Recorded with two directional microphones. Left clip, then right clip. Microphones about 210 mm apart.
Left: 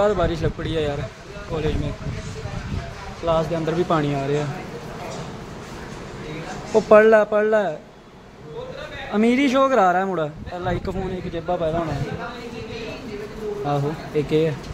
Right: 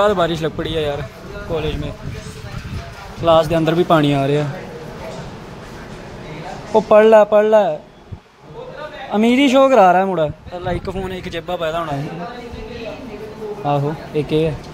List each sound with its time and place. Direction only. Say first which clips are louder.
0.0 s a man's voice: right 4 dB; 20° right (ahead or behind)
3.3 s speech: right 8 dB; 20° right (ahead or behind)
6.7 s a man's voice: right 3 dB; 10° right (ahead or behind)
9.1 s a man's voice: right 5 dB; 10° right (ahead or behind)
11.3 s a man's voice: right 2 dB; 30° right (ahead or behind)
13.7 s a man's voice: right 7 dB; 5° right (ahead or behind)